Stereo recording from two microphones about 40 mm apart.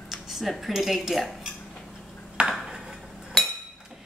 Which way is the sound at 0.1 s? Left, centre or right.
Centre.